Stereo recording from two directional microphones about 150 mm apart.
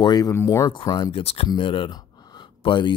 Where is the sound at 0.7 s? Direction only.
30° left (ahead or behind).